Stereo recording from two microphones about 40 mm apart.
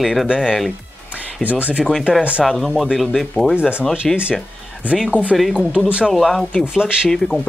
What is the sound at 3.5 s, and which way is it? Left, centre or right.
Speech, right.